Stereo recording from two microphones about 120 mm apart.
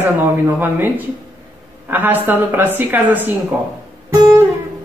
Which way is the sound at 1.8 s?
15° right (ahead or behind).